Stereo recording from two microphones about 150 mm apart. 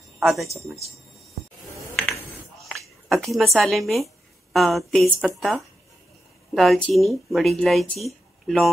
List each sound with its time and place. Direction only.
0.2 s speech: centre (ahead or behind)
2.6 s speech: centre (ahead or behind)